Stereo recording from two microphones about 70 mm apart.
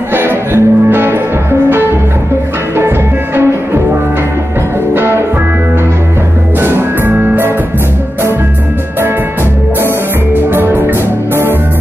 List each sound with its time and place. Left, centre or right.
0.1 s music: right
4.9 s music: right
6.6 s music: right
10.5 s music: right